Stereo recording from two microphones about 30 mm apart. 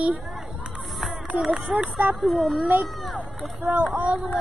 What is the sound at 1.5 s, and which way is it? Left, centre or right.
Speech, right.